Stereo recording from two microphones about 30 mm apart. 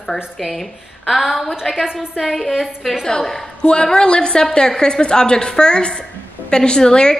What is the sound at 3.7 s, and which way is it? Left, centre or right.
A woman's voice, left.